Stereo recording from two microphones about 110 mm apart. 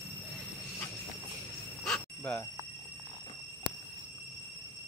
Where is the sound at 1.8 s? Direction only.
5° left (ahead or behind).